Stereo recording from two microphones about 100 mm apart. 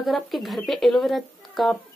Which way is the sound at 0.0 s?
Centre (ahead or behind).